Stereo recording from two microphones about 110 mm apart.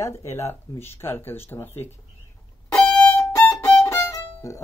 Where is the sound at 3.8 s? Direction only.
20° left (ahead or behind).